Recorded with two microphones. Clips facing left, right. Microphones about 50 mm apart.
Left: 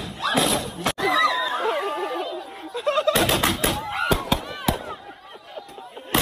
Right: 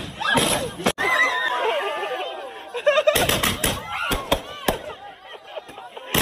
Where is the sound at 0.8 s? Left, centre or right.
Right.